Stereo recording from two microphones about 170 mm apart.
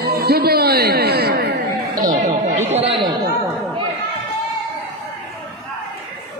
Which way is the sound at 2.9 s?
25° right (ahead or behind).